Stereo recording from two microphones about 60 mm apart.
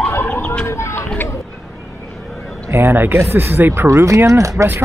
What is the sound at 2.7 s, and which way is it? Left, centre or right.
Speech, right.